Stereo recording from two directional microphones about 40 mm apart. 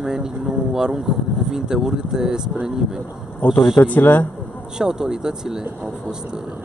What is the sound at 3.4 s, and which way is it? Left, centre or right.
Speech, left.